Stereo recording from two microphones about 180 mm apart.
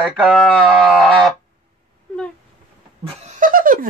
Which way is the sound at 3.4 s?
50° right (ahead or behind).